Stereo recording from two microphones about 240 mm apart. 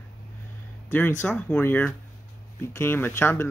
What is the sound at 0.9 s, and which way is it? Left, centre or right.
Speech, centre.